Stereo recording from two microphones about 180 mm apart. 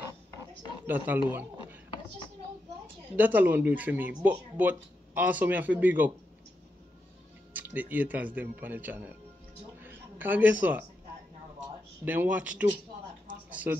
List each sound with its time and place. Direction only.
0.8 s speech: 10° right (ahead or behind)
1.3 s a sound: 10° right (ahead or behind)
3.2 s speech: 10° right (ahead or behind)
7.5 s speech: 10° right (ahead or behind)
9.8 s a sound: 10° right (ahead or behind)
12.0 s speech: 10° right (ahead or behind)